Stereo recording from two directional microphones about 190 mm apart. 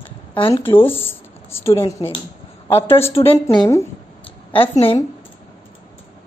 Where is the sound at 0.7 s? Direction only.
30° left (ahead or behind).